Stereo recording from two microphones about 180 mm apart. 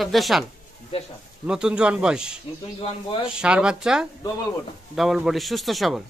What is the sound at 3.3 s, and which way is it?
Speech, 5° right (ahead or behind).